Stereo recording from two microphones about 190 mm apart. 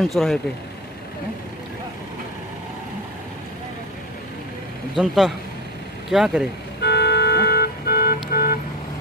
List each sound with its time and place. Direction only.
0.0 s speech: centre (ahead or behind)
4.9 s speech: centre (ahead or behind)
6.8 s vehicle: 60° left (ahead or behind)